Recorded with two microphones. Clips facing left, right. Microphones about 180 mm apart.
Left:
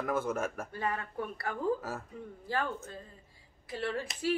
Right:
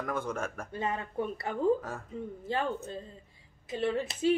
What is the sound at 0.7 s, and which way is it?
A woman's voice, 20° right (ahead or behind).